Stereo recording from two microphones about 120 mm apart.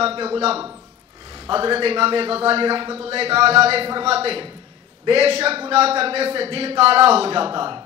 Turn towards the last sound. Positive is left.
turn(degrees=-40)  # may be behind; listen again after turning